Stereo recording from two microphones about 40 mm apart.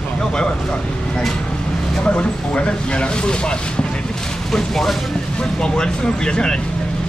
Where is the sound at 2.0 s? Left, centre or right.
Left.